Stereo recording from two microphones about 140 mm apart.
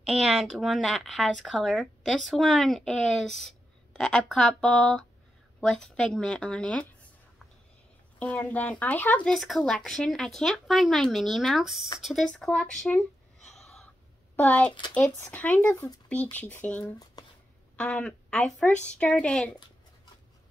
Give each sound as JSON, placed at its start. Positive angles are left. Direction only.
{"t": 0.0, "sound": "speech", "side_deg": 0}
{"t": 8.2, "sound": "a woman's voice", "side_deg": 10}
{"t": 17.2, "sound": "a sound", "side_deg": 30}
{"t": 17.7, "sound": "a woman's voice", "side_deg": 10}